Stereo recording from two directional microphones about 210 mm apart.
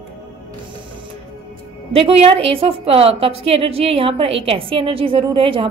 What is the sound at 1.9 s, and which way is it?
A woman's voice, 30° right (ahead or behind).